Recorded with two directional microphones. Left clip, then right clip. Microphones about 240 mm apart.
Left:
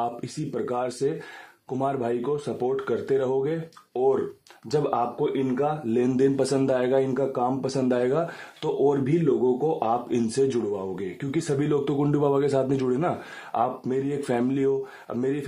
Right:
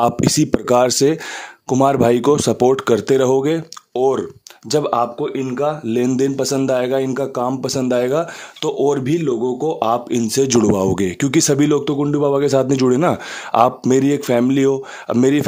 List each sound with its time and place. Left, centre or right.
0.0 s speech: right